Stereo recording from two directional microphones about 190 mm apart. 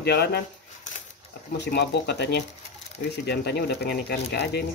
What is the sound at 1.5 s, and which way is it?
Speech, 60° left (ahead or behind).